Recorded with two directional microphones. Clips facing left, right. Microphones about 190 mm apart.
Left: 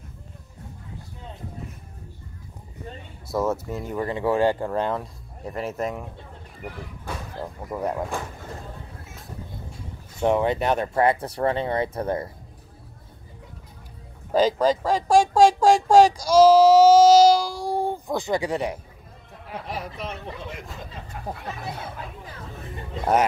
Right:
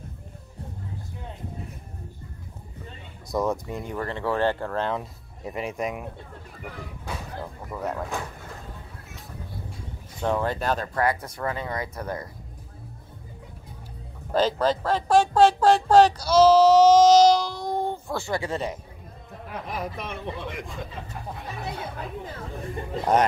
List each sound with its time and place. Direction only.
3.3 s speech: 5° left (ahead or behind)
5.4 s speech: centre (ahead or behind)
5.8 s speech: 15° right (ahead or behind)
7.7 s speech: 15° left (ahead or behind)
10.2 s speech: 20° left (ahead or behind)
14.3 s speech: 10° left (ahead or behind)
19.4 s speech: 50° right (ahead or behind)